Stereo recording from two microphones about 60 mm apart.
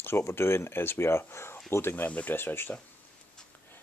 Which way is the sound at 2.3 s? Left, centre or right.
Left.